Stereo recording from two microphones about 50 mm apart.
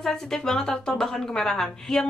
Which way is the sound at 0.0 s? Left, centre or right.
Centre.